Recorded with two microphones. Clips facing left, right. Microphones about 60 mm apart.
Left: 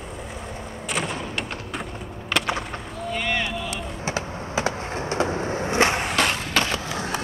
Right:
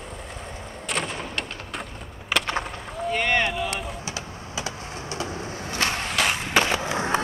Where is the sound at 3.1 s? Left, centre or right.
Right.